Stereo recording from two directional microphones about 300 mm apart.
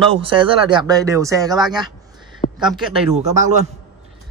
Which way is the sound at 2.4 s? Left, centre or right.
Centre.